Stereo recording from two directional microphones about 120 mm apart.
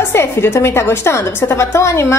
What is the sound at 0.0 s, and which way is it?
A woman's voice, 20° left (ahead or behind).